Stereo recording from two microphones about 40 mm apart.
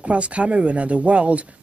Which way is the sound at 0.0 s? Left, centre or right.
Right.